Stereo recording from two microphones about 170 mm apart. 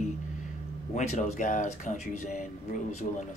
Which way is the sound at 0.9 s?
45° left (ahead or behind).